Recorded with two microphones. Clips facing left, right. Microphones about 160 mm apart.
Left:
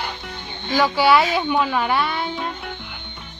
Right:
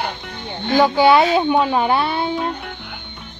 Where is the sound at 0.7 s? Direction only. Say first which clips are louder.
Right 4 dB; 20° right (ahead or behind).